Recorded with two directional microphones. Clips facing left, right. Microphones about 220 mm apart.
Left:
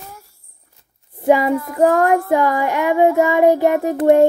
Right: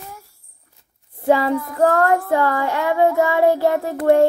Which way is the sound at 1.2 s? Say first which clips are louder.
Left 2 dB; 15° left (ahead or behind).